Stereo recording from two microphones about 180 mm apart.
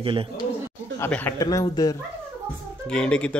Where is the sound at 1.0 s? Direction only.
10° left (ahead or behind).